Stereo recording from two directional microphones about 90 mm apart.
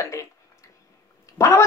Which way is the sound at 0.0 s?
35° left (ahead or behind).